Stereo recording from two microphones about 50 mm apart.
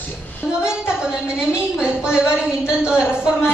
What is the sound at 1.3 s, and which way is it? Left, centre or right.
A woman's voice, centre.